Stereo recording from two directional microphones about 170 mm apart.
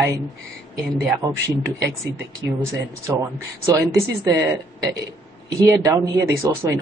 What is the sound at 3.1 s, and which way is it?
Speech, 20° right (ahead or behind).